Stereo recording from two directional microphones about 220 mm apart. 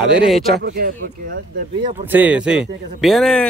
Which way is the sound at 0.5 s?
45° right (ahead or behind).